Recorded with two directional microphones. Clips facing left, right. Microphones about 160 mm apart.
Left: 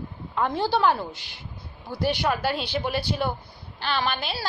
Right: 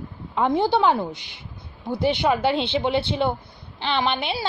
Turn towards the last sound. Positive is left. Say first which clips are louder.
# right 4 dB
turn(degrees=-20)  # may be behind; listen again after turning